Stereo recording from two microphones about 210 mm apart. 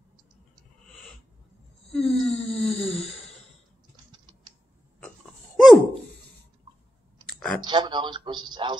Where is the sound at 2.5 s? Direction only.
30° left (ahead or behind).